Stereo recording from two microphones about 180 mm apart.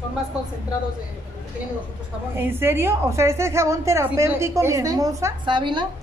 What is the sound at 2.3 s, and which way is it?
A woman's voice, 10° right (ahead or behind).